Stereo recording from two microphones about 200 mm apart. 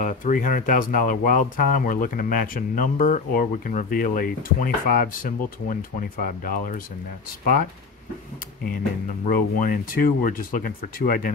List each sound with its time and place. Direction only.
0.0 s speech: 40° left (ahead or behind)
9.2 s speech: 45° left (ahead or behind)